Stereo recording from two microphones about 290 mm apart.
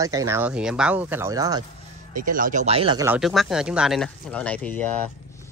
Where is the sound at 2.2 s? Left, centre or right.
Right; by 4.8 s centre.